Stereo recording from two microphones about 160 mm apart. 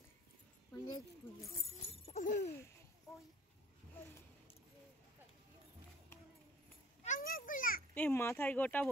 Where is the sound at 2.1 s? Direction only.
50° left (ahead or behind).